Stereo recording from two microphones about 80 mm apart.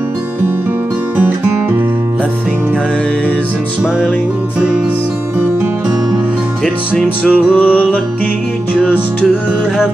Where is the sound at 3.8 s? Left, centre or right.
Centre.